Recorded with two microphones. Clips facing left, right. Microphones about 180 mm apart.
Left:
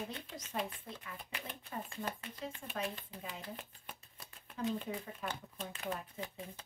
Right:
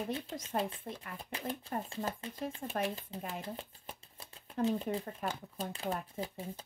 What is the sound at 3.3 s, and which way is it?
Shuffling cards, 30° right (ahead or behind).